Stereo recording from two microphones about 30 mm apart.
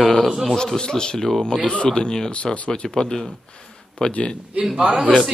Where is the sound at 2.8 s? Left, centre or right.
Left.